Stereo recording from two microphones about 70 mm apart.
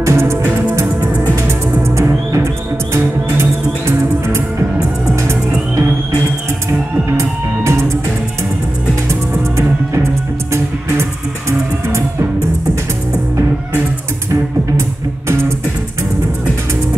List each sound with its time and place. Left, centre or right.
0.0 s music: right
7.1 s music: right
9.1 s music: right